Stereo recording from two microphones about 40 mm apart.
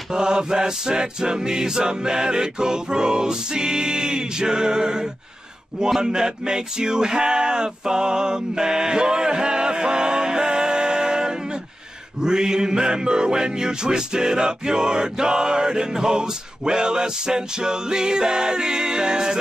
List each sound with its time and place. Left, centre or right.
0.1 s music: centre